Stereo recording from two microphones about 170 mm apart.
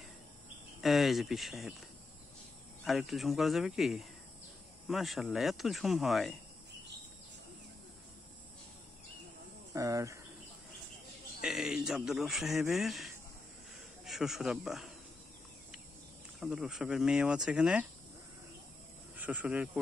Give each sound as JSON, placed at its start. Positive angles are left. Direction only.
{"t": 0.7, "sound": "a man's voice", "side_deg": 0}
{"t": 2.8, "sound": "a man's voice", "side_deg": 0}
{"t": 9.8, "sound": "speech", "side_deg": -20}
{"t": 11.4, "sound": "a man's voice", "side_deg": 0}
{"t": 16.3, "sound": "a man's voice", "side_deg": -5}
{"t": 19.1, "sound": "speech", "side_deg": -10}